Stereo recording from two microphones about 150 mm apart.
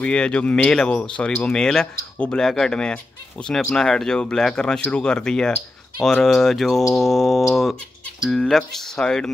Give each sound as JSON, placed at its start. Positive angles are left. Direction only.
{"t": 0.0, "sound": "speech", "side_deg": 5}